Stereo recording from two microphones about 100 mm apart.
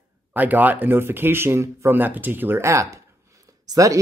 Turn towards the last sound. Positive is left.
turn(degrees=-35)  # may be behind; listen again after turning